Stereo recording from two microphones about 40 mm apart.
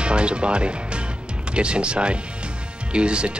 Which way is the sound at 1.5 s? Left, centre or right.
Right.